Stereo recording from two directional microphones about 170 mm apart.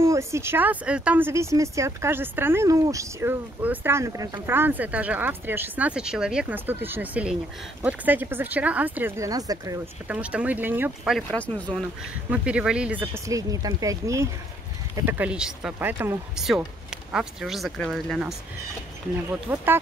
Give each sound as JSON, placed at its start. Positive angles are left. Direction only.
{"t": 0.0, "sound": "speech", "side_deg": -15}
{"t": 10.0, "sound": "speech", "side_deg": -10}
{"t": 11.2, "sound": "speech", "side_deg": 10}
{"t": 12.3, "sound": "speech", "side_deg": -5}
{"t": 13.0, "sound": "speech", "side_deg": -15}
{"t": 19.5, "sound": "speech", "side_deg": -10}